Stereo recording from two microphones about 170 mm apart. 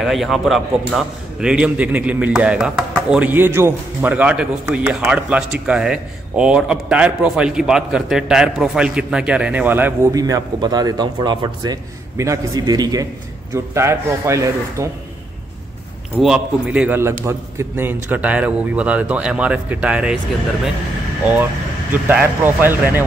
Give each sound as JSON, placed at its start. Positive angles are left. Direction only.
{"t": 0.0, "sound": "a man's voice", "side_deg": 0}
{"t": 16.2, "sound": "a man's voice", "side_deg": -5}
{"t": 22.0, "sound": "a man's voice", "side_deg": -10}